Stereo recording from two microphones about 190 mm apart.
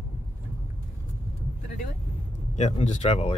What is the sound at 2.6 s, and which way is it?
Speech, 35° left (ahead or behind).